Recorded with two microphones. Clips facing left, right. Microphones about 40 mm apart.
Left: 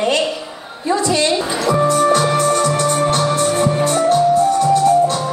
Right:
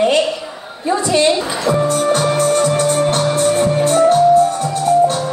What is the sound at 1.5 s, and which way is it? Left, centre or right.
Speech, centre.